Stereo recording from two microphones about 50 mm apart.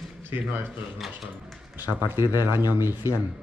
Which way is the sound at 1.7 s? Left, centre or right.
Right.